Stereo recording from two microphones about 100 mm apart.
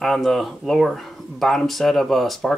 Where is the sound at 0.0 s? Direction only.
5° left (ahead or behind).